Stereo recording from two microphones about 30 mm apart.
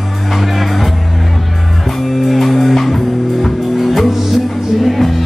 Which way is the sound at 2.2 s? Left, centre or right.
Centre.